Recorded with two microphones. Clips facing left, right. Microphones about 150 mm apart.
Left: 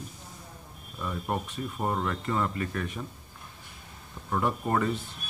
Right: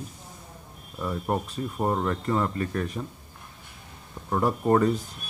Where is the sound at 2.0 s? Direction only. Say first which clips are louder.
Right 3 dB; 30° right (ahead or behind).